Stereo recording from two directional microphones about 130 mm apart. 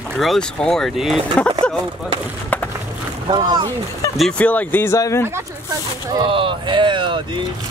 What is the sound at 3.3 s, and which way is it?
Speech, 35° right (ahead or behind).